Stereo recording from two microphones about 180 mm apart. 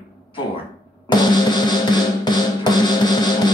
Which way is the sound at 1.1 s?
25° left (ahead or behind).